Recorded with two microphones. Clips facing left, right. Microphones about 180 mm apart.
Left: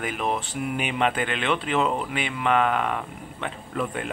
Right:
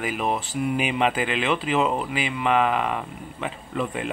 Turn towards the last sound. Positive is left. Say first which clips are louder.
# right 1 dB
turn(degrees=0)  # may be behind; listen again after turning